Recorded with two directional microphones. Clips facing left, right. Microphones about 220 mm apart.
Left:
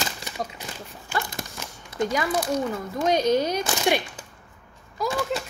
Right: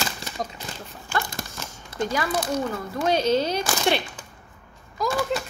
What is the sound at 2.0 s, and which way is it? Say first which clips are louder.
A woman's voice: left 1 dB; 20° left (ahead or behind).